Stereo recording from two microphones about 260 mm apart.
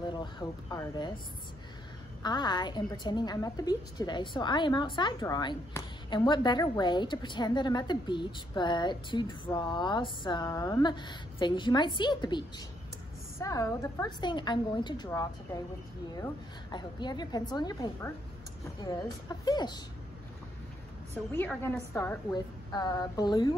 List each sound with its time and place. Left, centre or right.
0.1 s a woman's voice: centre
2.2 s a woman's voice: centre
16.7 s a woman's voice: centre
21.1 s a woman's voice: centre